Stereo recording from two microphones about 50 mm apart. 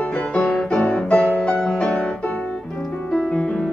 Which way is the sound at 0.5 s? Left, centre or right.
Left.